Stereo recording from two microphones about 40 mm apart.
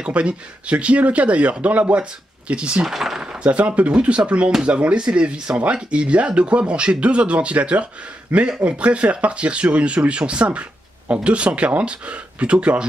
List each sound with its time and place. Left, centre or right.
0.0 s speech: right
2.9 s a sound: centre
3.4 s speech: right